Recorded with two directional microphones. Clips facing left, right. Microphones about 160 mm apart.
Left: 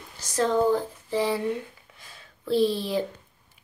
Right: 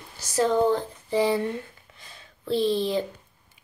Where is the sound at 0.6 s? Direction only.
5° left (ahead or behind).